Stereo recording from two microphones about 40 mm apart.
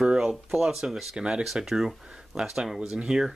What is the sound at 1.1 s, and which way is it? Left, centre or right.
Speech, right.